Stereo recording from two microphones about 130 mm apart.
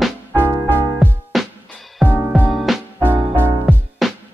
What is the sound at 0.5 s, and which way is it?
Music, 15° right (ahead or behind).